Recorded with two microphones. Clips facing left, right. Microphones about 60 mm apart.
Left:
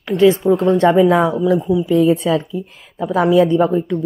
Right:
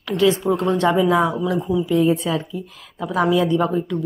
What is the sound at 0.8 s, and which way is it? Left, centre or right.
Speech, left.